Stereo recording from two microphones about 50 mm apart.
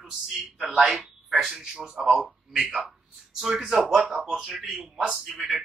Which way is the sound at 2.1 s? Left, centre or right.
Centre.